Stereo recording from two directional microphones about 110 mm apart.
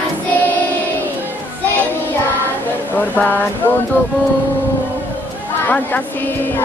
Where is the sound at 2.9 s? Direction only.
15° left (ahead or behind).